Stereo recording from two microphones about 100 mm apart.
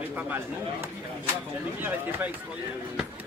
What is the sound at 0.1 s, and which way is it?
Speech, 20° right (ahead or behind).